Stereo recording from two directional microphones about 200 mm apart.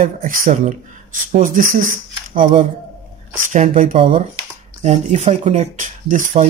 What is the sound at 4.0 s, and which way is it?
Speech, 25° right (ahead or behind).